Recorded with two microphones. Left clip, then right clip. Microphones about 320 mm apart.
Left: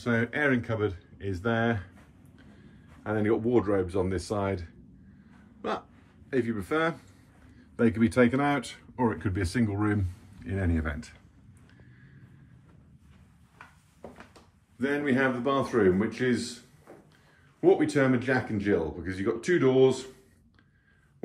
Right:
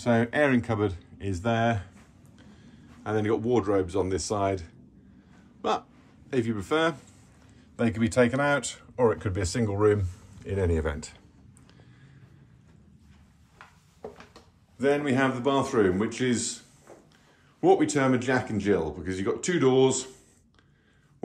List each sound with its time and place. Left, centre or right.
0.0 s speech: centre
3.0 s speech: centre
14.8 s speech: centre
17.6 s speech: centre